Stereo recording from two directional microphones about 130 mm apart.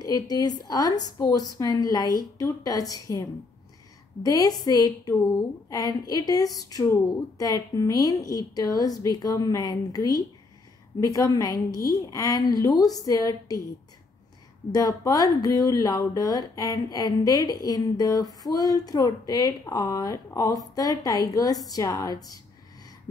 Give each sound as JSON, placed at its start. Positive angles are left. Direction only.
{"t": 0.0, "sound": "speech", "side_deg": 30}
{"t": 14.7, "sound": "speech", "side_deg": 30}